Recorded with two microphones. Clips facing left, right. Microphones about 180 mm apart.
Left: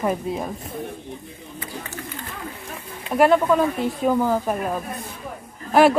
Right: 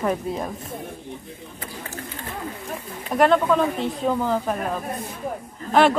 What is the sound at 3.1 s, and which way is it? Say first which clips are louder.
Speech: left 1 dB; 5° left (ahead or behind).